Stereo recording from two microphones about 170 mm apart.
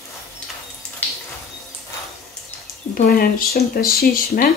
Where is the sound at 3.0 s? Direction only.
60° left (ahead or behind).